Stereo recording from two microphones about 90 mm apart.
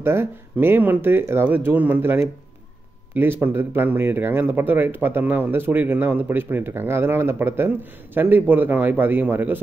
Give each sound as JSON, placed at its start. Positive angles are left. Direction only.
{"t": 0.0, "sound": "speech", "side_deg": -25}